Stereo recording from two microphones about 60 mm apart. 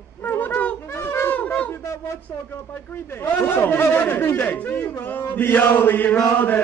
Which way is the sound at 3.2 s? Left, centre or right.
Left.